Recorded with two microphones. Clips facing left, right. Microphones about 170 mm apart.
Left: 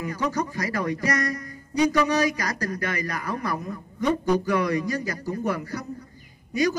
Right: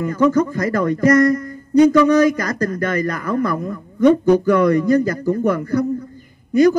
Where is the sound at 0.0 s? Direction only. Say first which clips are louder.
Right 11 dB; 50° right (ahead or behind).